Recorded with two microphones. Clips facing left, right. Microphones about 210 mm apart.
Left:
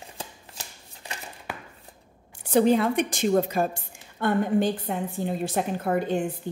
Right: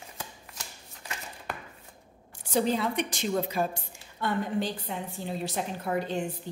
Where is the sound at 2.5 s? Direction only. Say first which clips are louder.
Left 7 dB; 55° left (ahead or behind).